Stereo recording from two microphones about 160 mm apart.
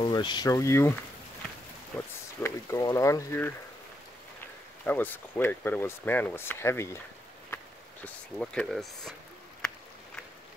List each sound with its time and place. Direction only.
0.0 s speech: 30° left (ahead or behind)
1.9 s speech: 10° left (ahead or behind)
4.8 s speech: 10° left (ahead or behind)
7.5 s a sound: 10° left (ahead or behind)